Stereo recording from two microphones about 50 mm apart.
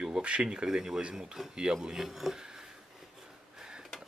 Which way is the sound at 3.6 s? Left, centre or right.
Centre.